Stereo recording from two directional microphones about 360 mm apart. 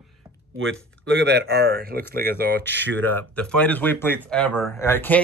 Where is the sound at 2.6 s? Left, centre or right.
Centre.